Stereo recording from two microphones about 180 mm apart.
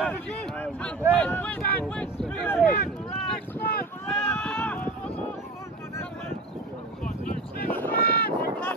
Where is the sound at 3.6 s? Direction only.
60° left (ahead or behind).